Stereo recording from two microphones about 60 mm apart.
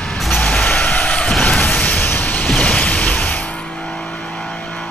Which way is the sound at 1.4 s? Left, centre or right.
Left.